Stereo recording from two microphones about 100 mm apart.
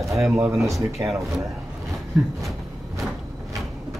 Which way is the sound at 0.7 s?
Centre (ahead or behind).